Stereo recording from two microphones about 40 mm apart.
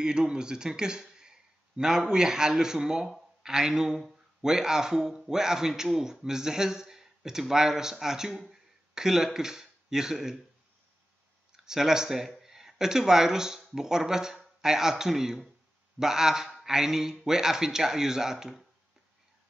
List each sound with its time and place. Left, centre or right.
0.0 s a man's voice: centre
11.5 s a man's voice: centre